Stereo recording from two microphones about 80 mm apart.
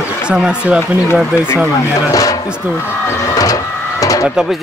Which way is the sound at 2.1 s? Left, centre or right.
Left.